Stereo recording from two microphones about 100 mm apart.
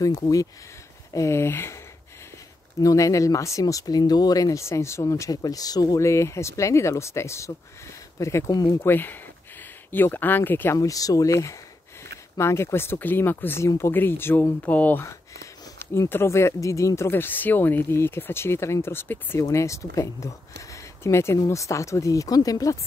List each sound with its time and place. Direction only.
0.0 s speech: 35° left (ahead or behind)
2.8 s speech: 35° left (ahead or behind)
10.8 s speech: 35° left (ahead or behind)